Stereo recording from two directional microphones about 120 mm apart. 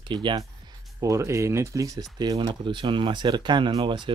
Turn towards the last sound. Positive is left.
turn(degrees=-40)  # may be behind; listen again after turning